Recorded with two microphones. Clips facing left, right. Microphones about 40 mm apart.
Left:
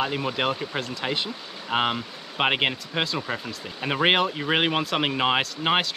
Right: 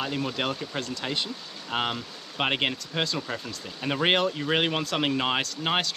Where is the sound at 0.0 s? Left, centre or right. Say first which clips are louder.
Left 4 dB; centre.